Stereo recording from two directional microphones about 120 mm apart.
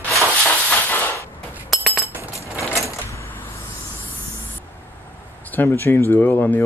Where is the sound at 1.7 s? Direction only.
Centre (ahead or behind).